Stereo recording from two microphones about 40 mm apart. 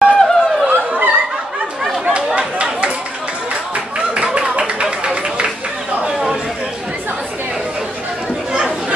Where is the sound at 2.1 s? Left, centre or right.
Right.